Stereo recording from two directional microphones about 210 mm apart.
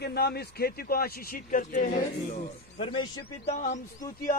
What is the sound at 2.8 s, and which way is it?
A man's voice, 25° left (ahead or behind).